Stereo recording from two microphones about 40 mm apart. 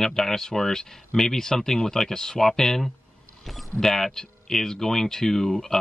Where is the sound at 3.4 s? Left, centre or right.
Centre.